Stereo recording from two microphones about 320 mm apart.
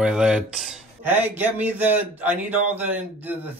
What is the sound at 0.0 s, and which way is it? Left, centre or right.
Speech, centre.